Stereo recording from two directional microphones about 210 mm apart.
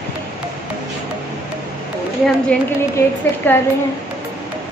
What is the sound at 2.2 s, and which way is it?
A woman's voice, 5° left (ahead or behind).